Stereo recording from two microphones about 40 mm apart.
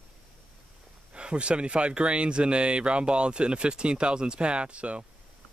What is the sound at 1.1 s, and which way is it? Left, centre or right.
Speech, right.